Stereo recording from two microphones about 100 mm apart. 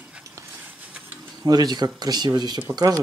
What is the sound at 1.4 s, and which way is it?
Speech, 45° right (ahead or behind).